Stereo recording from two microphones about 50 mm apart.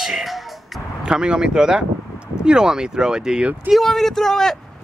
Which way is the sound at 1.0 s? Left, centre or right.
Centre.